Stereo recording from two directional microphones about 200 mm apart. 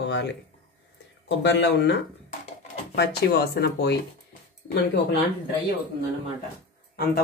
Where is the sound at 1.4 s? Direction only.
60° left (ahead or behind).